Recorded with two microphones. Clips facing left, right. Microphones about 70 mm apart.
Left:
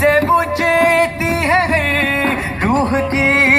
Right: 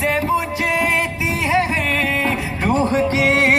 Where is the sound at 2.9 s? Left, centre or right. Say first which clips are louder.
Left 1 dB; left.